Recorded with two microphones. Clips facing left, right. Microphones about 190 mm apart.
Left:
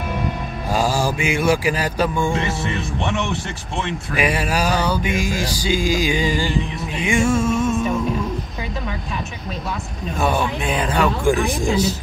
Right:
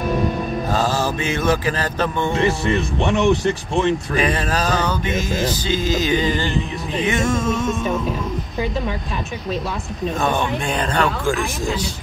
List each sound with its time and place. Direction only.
0.7 s music: 10° left (ahead or behind)
2.7 s speech: 35° right (ahead or behind)
4.1 s music: 10° left (ahead or behind)
10.1 s music: 10° left (ahead or behind)